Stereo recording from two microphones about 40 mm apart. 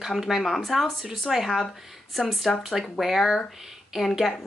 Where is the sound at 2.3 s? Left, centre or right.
Centre.